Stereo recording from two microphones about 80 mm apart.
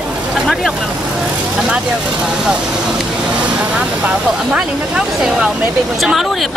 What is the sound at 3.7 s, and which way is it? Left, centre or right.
Speech, centre.